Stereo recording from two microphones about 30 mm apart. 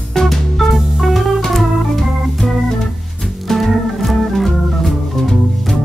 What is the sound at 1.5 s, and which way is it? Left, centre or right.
Organ, centre.